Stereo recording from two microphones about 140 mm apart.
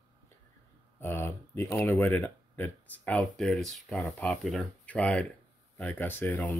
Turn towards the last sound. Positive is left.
turn(degrees=10)  # may be behind; listen again after turning